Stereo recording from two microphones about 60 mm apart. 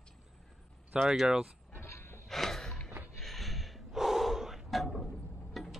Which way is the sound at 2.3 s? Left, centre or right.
Centre.